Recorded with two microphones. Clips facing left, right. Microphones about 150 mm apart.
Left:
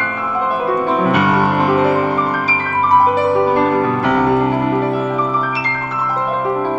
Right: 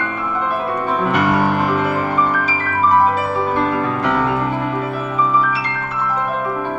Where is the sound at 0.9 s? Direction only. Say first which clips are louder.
Even; 10° left (ahead or behind).